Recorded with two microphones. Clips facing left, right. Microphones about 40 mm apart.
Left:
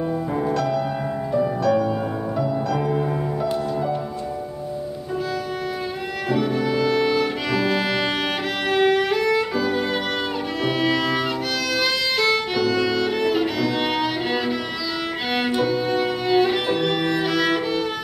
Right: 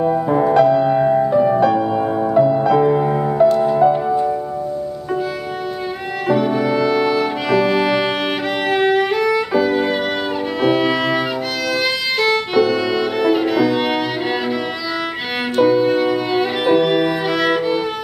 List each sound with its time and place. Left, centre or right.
0.1 s music: right
6.2 s music: centre
8.6 s violin: centre
15.6 s violin: centre